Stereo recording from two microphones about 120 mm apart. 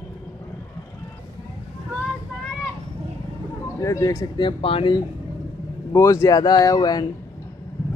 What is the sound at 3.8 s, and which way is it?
Speech, 25° left (ahead or behind).